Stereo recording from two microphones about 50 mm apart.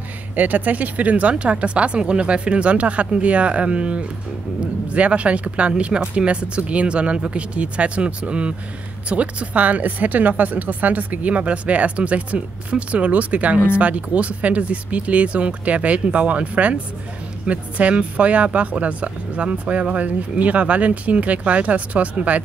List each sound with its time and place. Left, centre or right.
0.4 s speech: right